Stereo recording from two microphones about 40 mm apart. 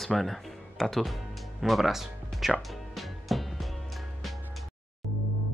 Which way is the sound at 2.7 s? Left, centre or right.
Centre.